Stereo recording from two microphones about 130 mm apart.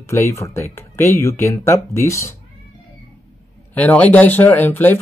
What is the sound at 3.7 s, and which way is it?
Speech, 10° left (ahead or behind).